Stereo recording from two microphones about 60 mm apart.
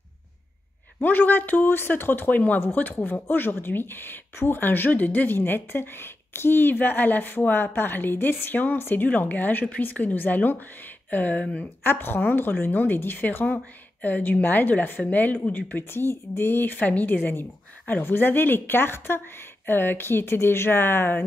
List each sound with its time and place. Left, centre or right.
1.0 s speech: left
15.9 s speech: left